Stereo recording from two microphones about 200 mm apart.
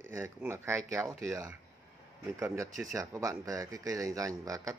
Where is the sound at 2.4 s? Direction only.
15° right (ahead or behind).